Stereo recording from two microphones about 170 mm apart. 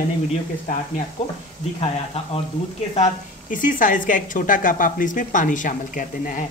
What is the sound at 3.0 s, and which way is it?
Speech, 50° left (ahead or behind).